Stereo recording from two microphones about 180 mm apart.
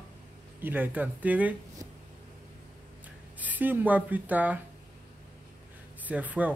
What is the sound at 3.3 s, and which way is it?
Speech, 10° right (ahead or behind).